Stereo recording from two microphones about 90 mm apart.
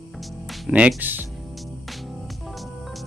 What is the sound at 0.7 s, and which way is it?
Speech, 15° right (ahead or behind).